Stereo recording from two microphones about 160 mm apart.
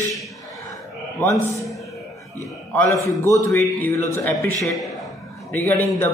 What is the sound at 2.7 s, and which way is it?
Speech, 10° left (ahead or behind).